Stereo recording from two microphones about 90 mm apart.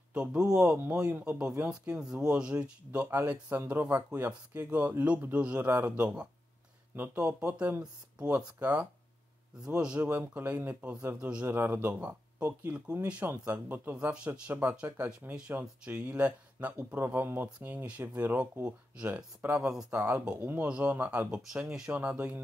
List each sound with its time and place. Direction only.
0.1 s speech: 15° right (ahead or behind)
11.4 s speech: 25° right (ahead or behind)
21.4 s speech: 5° right (ahead or behind)